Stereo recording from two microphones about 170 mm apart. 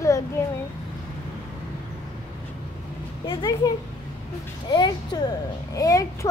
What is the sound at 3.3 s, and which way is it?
A child's voice, 25° left (ahead or behind).